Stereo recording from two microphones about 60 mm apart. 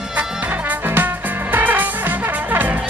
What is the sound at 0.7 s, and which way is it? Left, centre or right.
Music, right.